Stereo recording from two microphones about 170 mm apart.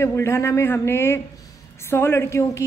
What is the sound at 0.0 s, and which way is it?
A woman's voice, 15° left (ahead or behind).